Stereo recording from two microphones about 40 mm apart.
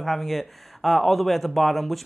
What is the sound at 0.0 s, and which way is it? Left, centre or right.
Speech, centre.